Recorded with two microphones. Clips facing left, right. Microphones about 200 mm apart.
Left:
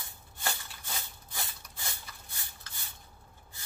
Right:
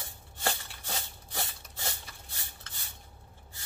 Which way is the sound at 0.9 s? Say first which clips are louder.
Right 4 dB; 40° right (ahead or behind).